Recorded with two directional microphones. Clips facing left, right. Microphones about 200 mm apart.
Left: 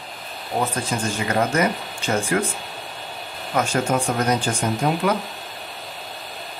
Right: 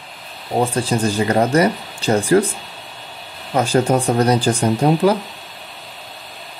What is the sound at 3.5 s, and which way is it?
Speech, 35° right (ahead or behind).